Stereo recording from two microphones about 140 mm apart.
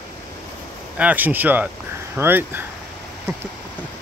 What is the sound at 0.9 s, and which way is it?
Speech, 10° right (ahead or behind).